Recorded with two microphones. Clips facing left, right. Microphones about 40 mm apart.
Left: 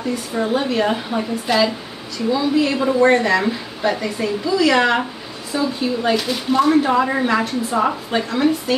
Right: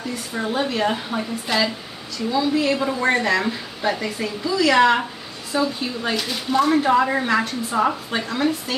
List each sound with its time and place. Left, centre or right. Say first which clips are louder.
0.1 s speech: left 5 dB; centre